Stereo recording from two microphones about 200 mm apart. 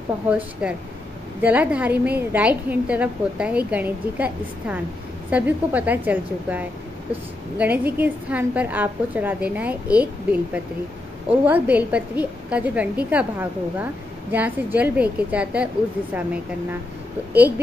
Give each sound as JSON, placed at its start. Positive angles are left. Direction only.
{"t": 0.3, "sound": "a woman's voice", "side_deg": -5}
{"t": 11.4, "sound": "a woman's voice", "side_deg": -10}